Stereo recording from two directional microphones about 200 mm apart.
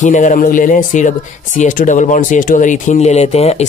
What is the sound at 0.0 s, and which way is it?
Speech, 40° left (ahead or behind).